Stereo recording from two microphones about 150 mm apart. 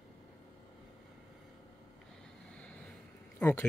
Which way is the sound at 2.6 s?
5° left (ahead or behind).